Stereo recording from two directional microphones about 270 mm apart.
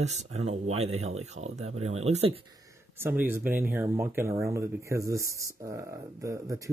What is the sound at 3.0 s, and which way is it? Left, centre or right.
Speech, centre.